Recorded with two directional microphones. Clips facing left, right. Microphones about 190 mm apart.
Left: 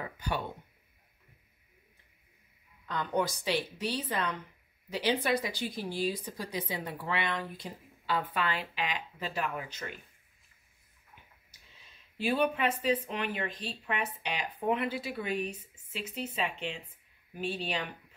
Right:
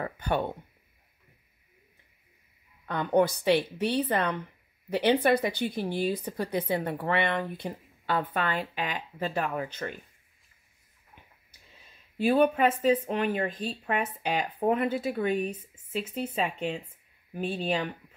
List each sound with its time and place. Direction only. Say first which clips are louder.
0.0 s a sound: right 6 dB; 55° right (ahead or behind)
2.9 s a woman's voice: right 7 dB; 60° right (ahead or behind)
12.2 s speech: right 6 dB; 50° right (ahead or behind)